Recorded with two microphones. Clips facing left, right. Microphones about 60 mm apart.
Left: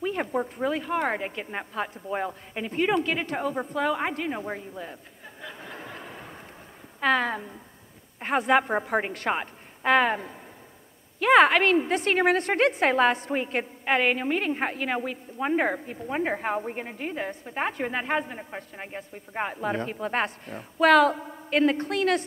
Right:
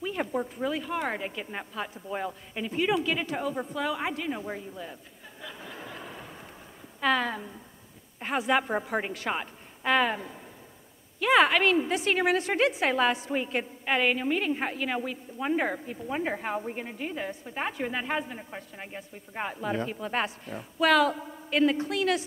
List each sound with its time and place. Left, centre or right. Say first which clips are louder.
0.0 s a woman's voice: left 3 dB; left
3.3 s a woman's voice: left 3 dB; left
5.4 s a sound: left 2 dB; left
7.0 s a woman's voice: left 2 dB; left
8.5 s a woman's voice: left 4 dB; left
11.9 s a woman's voice: left 3 dB; left
13.3 s a woman's voice: left 2 dB; left
20.8 s a woman's voice: left 4 dB; left
21.1 s a woman's voice: left 2 dB; centre
21.5 s a woman's voice: left 2 dB; left
21.8 s a woman's voice: left 3 dB; left